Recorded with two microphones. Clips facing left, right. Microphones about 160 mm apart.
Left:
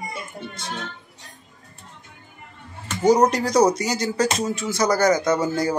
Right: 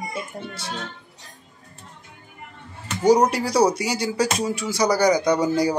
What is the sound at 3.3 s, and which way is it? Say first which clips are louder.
Speech: left 1 dB; 10° right (ahead or behind).